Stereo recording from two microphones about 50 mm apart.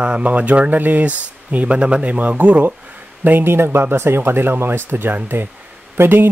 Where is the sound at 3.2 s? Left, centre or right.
Right.